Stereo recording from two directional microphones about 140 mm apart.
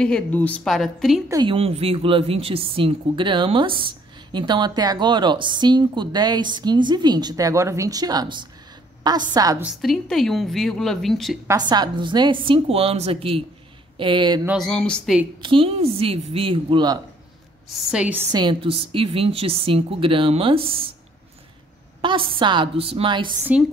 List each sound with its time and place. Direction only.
0.0 s a woman's voice: 10° left (ahead or behind)
1.5 s a woman's voice: 45° right (ahead or behind); by 9.6 s 25° right (ahead or behind)
9.8 s a woman's voice: centre (ahead or behind)
11.7 s a woman's voice: 30° right (ahead or behind)
14.6 s a woman's voice: 5° left (ahead or behind)
15.4 s a woman's voice: 40° right (ahead or behind)
17.9 s a woman's voice: 10° right (ahead or behind)
18.3 s a woman's voice: 35° right (ahead or behind)
22.0 s a woman's voice: 35° right (ahead or behind)